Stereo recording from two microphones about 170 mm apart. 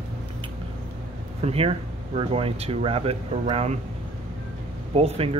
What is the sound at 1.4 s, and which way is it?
Speech, 35° right (ahead or behind).